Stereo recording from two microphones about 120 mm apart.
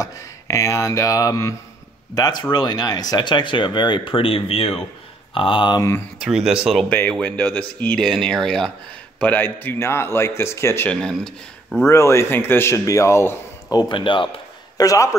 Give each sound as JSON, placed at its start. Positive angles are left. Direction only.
{"t": 0.0, "sound": "a man's voice", "side_deg": 25}
{"t": 5.8, "sound": "speech", "side_deg": 20}
{"t": 6.2, "sound": "speech", "side_deg": -5}
{"t": 6.9, "sound": "speech", "side_deg": 10}
{"t": 10.9, "sound": "speech", "side_deg": 5}
{"t": 11.8, "sound": "speech", "side_deg": 25}
{"t": 13.7, "sound": "a man's voice", "side_deg": 35}
{"t": 14.8, "sound": "a man's voice", "side_deg": 30}